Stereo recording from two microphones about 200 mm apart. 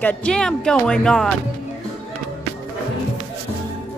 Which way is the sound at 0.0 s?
5° left (ahead or behind).